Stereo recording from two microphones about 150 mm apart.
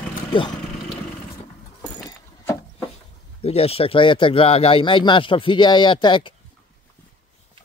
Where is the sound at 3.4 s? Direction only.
40° left (ahead or behind).